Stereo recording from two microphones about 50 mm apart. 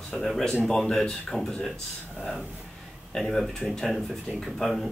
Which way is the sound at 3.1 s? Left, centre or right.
Centre.